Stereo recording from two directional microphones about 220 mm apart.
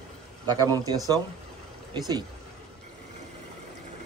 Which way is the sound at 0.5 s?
15° right (ahead or behind).